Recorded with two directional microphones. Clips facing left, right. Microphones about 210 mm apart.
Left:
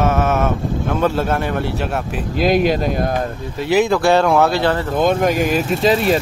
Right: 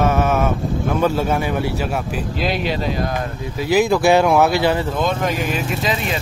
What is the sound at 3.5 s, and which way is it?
Mantra, centre (ahead or behind).